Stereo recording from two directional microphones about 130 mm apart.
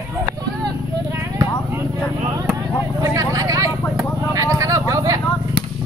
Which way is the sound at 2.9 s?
25° right (ahead or behind).